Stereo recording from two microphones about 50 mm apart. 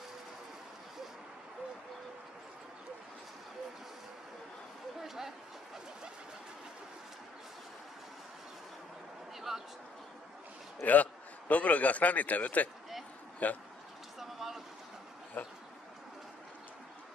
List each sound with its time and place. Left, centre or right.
5.0 s a sound: centre
9.5 s speech: centre
10.8 s a man's voice: left
14.2 s vehicle: centre
15.4 s speech: left